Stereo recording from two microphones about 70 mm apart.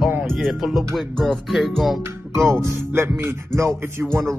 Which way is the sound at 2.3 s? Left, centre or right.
Right.